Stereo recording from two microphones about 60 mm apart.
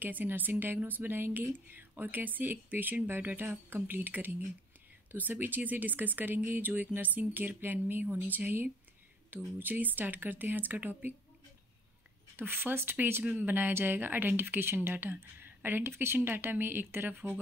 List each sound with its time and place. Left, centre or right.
0.0 s speech: right
12.4 s speech: right